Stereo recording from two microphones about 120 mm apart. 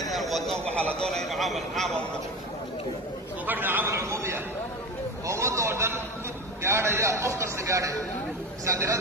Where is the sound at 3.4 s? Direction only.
15° right (ahead or behind).